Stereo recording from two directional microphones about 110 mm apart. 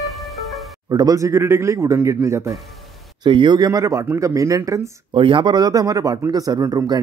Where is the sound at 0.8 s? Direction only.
35° right (ahead or behind).